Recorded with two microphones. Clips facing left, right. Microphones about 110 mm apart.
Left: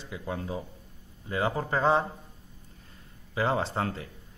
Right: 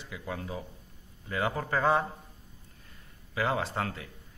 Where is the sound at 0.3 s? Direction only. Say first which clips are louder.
Left 3 dB; 25° left (ahead or behind).